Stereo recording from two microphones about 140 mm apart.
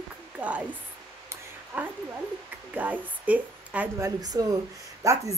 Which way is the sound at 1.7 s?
10° right (ahead or behind).